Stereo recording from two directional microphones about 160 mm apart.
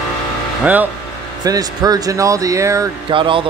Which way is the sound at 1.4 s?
25° right (ahead or behind).